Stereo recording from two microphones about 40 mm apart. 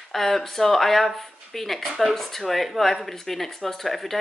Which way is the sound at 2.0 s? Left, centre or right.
Centre.